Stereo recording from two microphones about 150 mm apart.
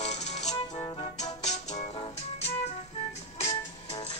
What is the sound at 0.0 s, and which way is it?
Music, 50° left (ahead or behind).